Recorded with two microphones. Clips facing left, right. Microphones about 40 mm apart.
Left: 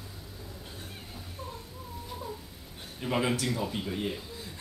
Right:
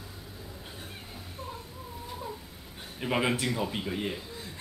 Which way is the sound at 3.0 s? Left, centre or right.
Centre.